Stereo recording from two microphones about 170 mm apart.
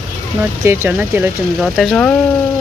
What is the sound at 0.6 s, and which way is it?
Speech, 15° right (ahead or behind).